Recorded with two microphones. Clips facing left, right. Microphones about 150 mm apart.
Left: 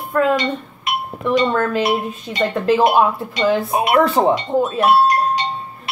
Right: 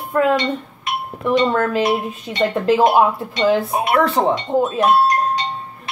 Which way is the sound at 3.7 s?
20° left (ahead or behind).